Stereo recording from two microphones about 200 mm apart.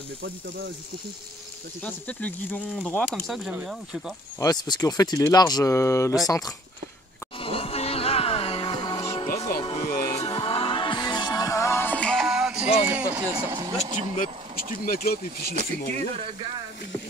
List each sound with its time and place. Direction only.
1.8 s speech: 5° left (ahead or behind)
4.4 s speech: 20° left (ahead or behind)
7.3 s music: 25° left (ahead or behind)
10.2 s music: 25° left (ahead or behind); by 12.7 s 5° right (ahead or behind)
12.8 s speech: 5° right (ahead or behind)
13.6 s speech: 20° right (ahead or behind)
15.5 s speech: 35° right (ahead or behind)